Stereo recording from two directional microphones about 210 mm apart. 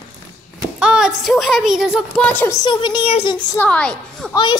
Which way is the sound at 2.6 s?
20° left (ahead or behind).